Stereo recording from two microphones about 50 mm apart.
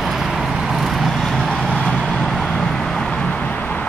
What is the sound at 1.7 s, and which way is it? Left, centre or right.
Vehicle, centre.